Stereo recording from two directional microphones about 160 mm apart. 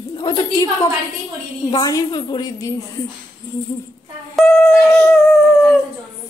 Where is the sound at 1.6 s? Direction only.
25° left (ahead or behind).